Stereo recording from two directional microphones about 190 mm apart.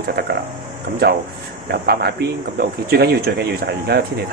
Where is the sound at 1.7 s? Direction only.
55° right (ahead or behind).